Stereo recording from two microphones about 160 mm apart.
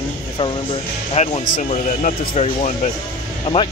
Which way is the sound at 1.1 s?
45° left (ahead or behind).